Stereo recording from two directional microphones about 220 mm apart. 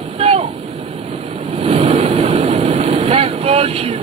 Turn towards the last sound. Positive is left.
turn(degrees=-25)  # may be behind; listen again after turning